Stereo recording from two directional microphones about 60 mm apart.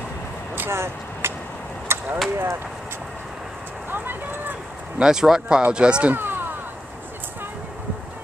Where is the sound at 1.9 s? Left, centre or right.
Right.